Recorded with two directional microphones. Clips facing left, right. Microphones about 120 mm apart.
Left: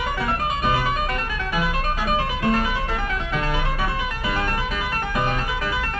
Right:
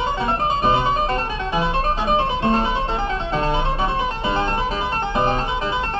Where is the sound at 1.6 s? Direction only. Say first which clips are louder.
Right 4 dB; 25° right (ahead or behind).